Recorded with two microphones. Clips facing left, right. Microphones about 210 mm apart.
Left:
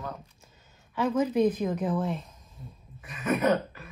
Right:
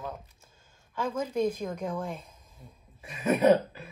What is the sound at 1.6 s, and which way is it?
Speech, 5° left (ahead or behind).